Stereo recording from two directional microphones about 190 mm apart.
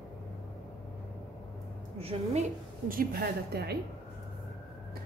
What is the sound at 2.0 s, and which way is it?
Speech, 30° right (ahead or behind).